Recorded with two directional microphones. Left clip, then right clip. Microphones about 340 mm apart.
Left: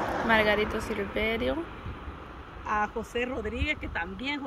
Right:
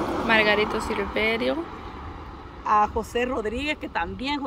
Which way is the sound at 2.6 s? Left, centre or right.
Centre.